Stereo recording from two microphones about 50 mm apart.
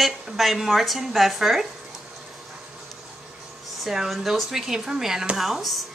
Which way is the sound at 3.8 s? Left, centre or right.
Centre.